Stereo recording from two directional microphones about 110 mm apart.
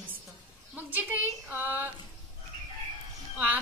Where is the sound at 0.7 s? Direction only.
15° right (ahead or behind).